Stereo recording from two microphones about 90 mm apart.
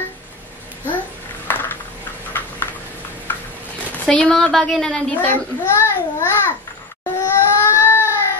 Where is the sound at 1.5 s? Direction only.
20° left (ahead or behind).